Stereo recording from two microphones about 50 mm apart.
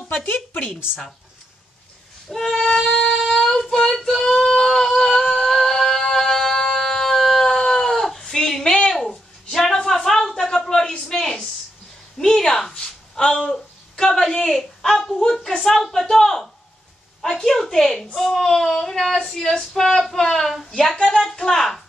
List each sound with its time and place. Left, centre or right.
0.1 s a woman's voice: left
2.2 s child singing: centre
8.9 s a sound: centre
13.2 s a woman's voice: centre